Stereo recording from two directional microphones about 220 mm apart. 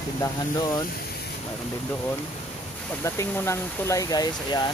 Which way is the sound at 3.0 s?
10° left (ahead or behind).